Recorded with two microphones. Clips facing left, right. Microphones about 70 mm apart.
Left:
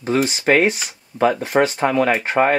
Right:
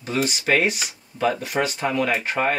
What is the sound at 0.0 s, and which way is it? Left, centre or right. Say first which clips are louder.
Speech: left 6 dB; left.